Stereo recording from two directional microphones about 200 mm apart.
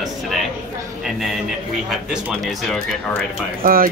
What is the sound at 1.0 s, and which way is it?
A man's voice, centre (ahead or behind).